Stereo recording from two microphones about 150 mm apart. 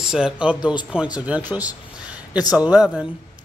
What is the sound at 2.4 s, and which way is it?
Speech, 25° left (ahead or behind).